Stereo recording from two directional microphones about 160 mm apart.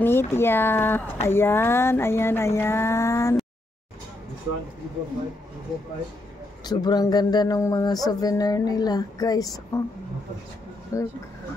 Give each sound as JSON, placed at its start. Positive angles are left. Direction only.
{"t": 0.0, "sound": "a sound", "side_deg": 15}
{"t": 6.6, "sound": "speech", "side_deg": 25}
{"t": 10.9, "sound": "speech", "side_deg": 20}